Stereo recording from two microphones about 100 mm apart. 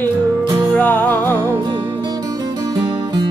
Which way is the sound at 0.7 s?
20° left (ahead or behind).